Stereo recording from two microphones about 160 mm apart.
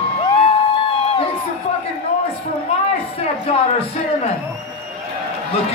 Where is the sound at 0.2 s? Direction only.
35° left (ahead or behind).